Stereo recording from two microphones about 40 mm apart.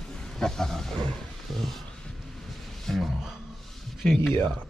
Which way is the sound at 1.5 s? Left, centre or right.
Centre.